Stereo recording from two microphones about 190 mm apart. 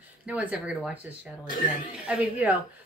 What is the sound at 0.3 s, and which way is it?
Speech, 5° right (ahead or behind).